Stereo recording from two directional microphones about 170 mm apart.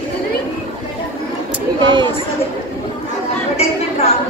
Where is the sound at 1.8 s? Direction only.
25° right (ahead or behind).